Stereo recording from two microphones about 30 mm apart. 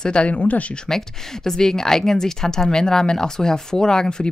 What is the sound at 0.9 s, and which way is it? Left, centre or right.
Speech, centre.